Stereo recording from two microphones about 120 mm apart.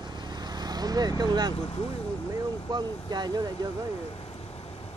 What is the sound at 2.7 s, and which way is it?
Speech, 35° right (ahead or behind).